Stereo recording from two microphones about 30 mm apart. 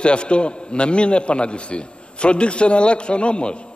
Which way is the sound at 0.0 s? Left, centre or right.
Left.